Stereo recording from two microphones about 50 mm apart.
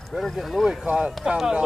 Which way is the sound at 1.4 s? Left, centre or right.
Centre.